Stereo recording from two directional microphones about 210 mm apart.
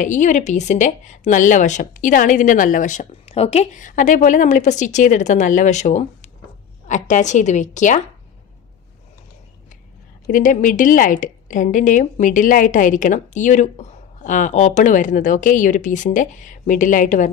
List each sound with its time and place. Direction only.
0.0 s a woman's voice: 35° left (ahead or behind)
10.2 s a woman's voice: 40° left (ahead or behind)